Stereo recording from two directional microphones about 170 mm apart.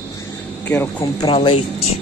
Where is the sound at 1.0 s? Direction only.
30° left (ahead or behind).